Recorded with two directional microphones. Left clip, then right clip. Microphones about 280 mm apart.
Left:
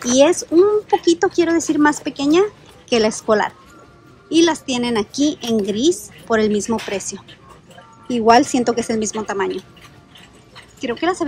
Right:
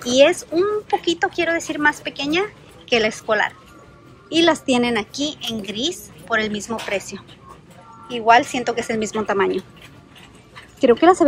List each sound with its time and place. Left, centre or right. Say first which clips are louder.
0.0 s speech: left 1 dB; centre
10.8 s a woman's voice: right 7 dB; centre